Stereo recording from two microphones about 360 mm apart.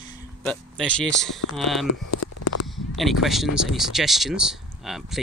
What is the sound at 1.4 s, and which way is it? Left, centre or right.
Speech, left.